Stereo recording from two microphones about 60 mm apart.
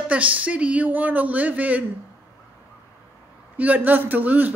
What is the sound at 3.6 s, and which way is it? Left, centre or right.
Speech, right.